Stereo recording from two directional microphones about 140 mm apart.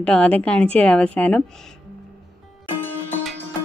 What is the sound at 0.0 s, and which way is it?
A woman's voice, 10° left (ahead or behind).